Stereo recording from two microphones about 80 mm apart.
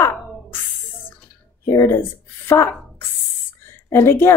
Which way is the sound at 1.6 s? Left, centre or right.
Left.